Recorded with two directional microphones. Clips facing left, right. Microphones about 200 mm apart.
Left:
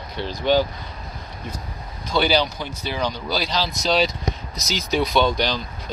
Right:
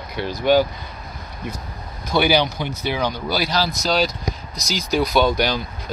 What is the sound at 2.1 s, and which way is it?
Speech, 10° right (ahead or behind).